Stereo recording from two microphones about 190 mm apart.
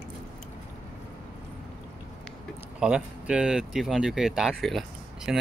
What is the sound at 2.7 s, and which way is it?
Speech, 5° right (ahead or behind).